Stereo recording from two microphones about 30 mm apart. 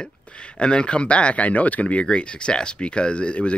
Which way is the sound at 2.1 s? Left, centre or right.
Left.